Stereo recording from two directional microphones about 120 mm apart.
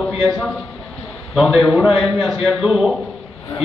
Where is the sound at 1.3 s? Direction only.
Centre (ahead or behind).